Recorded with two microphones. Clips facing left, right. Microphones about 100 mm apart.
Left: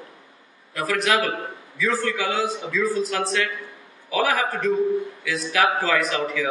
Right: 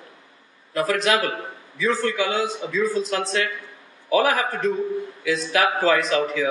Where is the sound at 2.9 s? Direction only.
30° right (ahead or behind).